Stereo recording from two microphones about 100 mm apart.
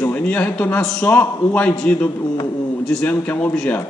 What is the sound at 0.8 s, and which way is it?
Speech, 5° left (ahead or behind).